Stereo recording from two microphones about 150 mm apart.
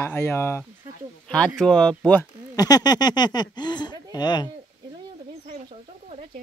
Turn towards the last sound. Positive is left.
turn(degrees=25)  # may be behind; listen again after turning